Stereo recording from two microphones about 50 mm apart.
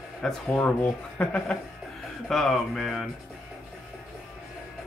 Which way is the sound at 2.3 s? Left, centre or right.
Centre.